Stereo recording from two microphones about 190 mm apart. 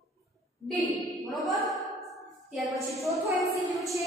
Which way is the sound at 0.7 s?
Centre (ahead or behind).